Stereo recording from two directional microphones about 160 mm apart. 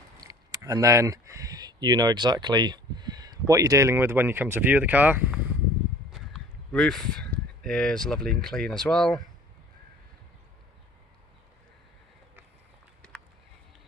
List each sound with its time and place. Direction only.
0.2 s speech: 20° right (ahead or behind)
6.1 s speech: centre (ahead or behind)